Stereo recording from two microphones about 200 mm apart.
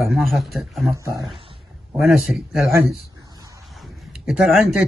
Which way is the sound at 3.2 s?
15° right (ahead or behind).